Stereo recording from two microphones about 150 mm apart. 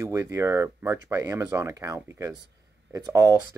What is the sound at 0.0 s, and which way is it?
Speech, 20° right (ahead or behind).